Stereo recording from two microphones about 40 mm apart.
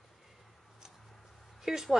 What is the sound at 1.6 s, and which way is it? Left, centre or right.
Speech, centre.